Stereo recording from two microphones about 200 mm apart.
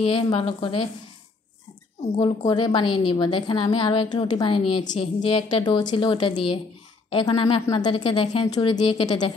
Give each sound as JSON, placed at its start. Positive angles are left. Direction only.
{"t": 0.0, "sound": "a woman's voice", "side_deg": 25}
{"t": 2.1, "sound": "a woman's voice", "side_deg": 25}